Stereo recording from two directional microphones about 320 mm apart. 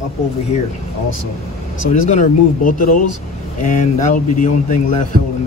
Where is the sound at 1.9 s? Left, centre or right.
Left.